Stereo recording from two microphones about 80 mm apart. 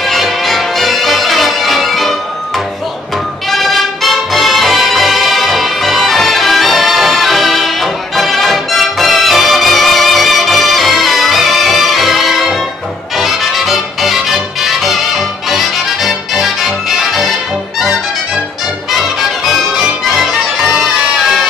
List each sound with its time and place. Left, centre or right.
0.0 s music: centre
3.4 s music: centre
18.9 s music: centre